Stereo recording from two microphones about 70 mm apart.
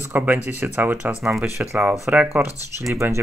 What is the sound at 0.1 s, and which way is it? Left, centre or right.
Speech, right.